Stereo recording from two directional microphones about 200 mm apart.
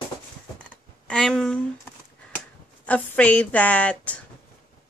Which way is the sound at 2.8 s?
5° left (ahead or behind).